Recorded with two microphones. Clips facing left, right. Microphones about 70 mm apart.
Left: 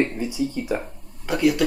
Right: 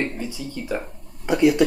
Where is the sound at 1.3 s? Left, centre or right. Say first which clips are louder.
Right 3 dB; right.